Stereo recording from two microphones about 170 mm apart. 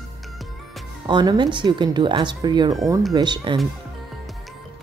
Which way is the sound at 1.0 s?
25° right (ahead or behind).